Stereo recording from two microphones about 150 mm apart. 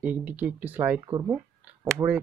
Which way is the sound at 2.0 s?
20° right (ahead or behind).